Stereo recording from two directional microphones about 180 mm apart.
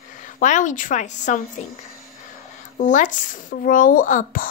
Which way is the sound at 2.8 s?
45° left (ahead or behind).